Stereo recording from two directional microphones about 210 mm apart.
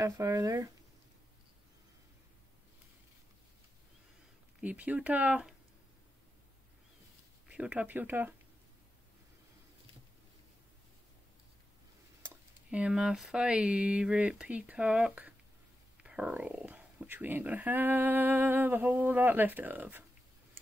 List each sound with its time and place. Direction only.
0.0 s speech: 15° right (ahead or behind)
4.6 s speech: 5° right (ahead or behind)
7.4 s speech: 5° right (ahead or behind)
12.7 s speech: 5° right (ahead or behind)